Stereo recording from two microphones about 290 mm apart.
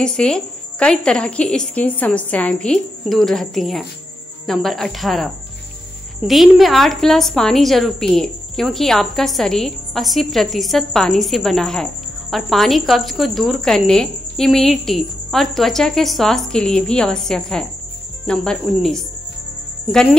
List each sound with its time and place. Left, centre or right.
0.0 s a woman's voice: centre